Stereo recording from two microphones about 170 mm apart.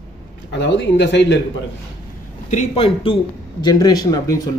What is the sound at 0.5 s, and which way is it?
Speech, 90° left.